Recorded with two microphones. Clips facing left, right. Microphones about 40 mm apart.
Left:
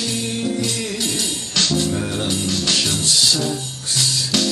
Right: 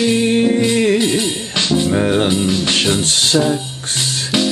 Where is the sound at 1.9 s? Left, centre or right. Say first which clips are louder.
Right 8 dB; right.